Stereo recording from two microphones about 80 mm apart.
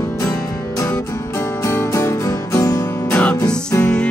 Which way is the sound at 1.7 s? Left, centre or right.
Left.